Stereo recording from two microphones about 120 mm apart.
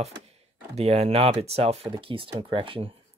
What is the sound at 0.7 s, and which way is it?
Speech, 60° right (ahead or behind).